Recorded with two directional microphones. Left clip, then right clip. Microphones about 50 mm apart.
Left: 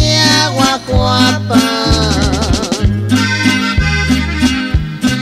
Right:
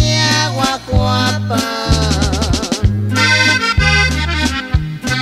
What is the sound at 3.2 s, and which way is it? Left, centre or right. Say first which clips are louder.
Accordion: right 4 dB; right.